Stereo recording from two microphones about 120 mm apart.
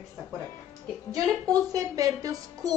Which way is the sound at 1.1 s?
30° right (ahead or behind).